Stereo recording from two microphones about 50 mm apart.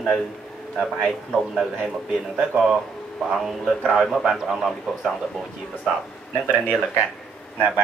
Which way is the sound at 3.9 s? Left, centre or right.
Centre.